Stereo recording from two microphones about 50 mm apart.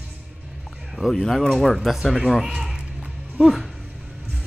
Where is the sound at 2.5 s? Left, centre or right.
Centre.